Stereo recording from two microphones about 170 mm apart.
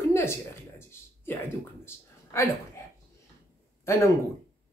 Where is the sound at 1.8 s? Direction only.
15° left (ahead or behind).